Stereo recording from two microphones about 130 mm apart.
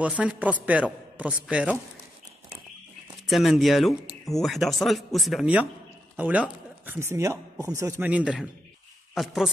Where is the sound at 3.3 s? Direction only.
Centre (ahead or behind).